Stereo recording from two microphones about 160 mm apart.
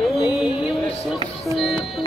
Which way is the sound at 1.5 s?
Centre (ahead or behind).